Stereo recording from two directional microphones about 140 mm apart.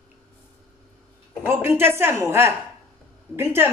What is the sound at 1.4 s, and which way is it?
A woman's voice, 15° right (ahead or behind).